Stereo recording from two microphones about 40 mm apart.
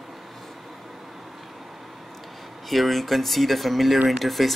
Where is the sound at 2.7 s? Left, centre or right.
Centre.